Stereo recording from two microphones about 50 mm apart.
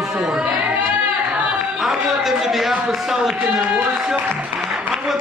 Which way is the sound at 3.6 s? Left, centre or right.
Right.